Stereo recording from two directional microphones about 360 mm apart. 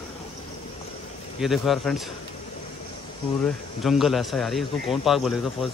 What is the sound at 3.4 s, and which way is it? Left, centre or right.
A man's voice, centre.